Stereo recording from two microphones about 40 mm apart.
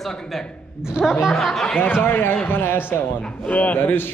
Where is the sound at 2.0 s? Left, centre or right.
Left.